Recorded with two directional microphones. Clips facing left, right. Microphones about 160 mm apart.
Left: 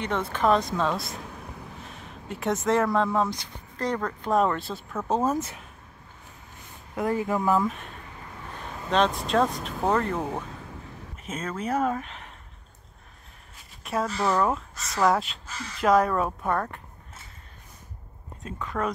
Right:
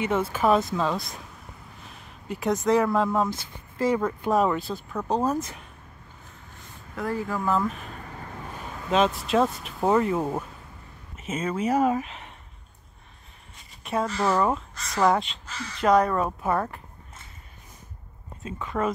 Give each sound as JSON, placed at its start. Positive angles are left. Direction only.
{"t": 0.0, "sound": "speech", "side_deg": -5}
{"t": 7.0, "sound": "speech", "side_deg": 20}
{"t": 7.5, "sound": "speech", "side_deg": 0}
{"t": 8.9, "sound": "speech", "side_deg": -5}
{"t": 13.6, "sound": "speech", "side_deg": 0}
{"t": 18.4, "sound": "speech", "side_deg": 0}